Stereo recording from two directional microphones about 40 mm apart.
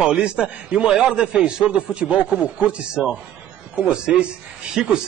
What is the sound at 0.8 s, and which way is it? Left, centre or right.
Speech, centre.